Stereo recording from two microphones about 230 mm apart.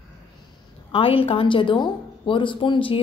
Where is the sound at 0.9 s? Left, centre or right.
Left.